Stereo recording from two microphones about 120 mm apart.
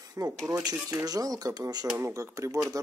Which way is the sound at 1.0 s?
30° right (ahead or behind).